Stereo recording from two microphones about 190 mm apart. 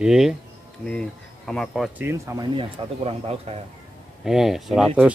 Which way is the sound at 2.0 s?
15° right (ahead or behind).